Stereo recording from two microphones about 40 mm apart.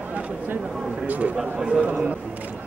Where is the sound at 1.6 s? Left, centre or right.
Right.